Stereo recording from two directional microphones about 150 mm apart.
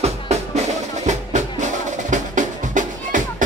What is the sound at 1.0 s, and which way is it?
Music, 55° right (ahead or behind).